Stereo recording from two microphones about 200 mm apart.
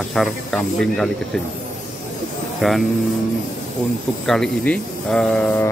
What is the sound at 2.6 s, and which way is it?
Speech, centre (ahead or behind).